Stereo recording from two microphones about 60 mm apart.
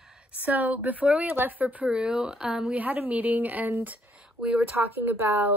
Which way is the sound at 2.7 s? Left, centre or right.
Right.